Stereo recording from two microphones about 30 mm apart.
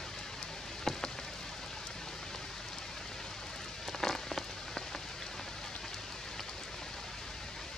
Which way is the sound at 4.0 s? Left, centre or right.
Centre.